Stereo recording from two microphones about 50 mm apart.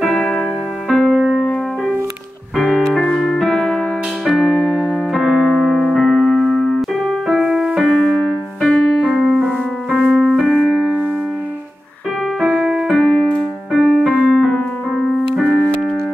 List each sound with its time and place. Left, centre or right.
0.4 s music: centre
2.5 s music: centre
4.9 s keyboard: centre
7.8 s music: centre
8.5 s music: centre
9.1 s music: centre
9.4 s music: centre
10.0 s music: centre
12.4 s keyboard: centre
12.9 s keyboard: centre
13.7 s music: centre
14.2 s keyboard: centre